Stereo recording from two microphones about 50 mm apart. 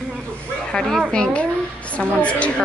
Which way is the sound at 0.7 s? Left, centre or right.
Centre.